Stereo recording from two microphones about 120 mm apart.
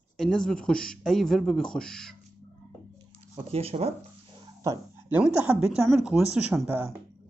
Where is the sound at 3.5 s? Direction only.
55° right (ahead or behind).